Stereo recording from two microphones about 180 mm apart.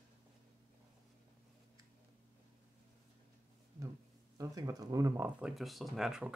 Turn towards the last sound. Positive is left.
turn(degrees=-5)  # may be behind; listen again after turning